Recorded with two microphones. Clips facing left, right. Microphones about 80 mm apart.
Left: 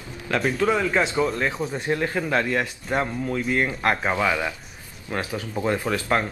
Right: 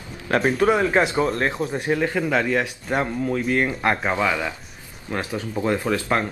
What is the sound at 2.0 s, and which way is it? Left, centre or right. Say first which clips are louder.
Speech: right 3 dB; centre.